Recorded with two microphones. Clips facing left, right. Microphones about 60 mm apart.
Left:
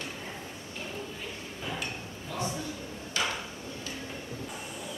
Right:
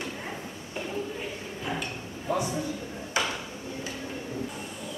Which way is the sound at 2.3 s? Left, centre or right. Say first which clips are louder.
Right 6 dB; right.